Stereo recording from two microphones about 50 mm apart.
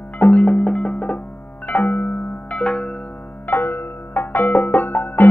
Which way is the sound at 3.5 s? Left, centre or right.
Left.